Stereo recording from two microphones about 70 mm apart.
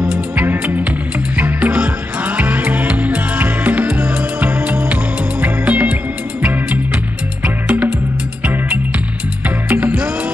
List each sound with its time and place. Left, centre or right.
0.0 s music: right
9.7 s music: right